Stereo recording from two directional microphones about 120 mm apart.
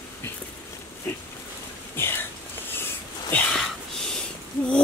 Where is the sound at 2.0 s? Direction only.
20° left (ahead or behind); by 4.2 s 5° left (ahead or behind).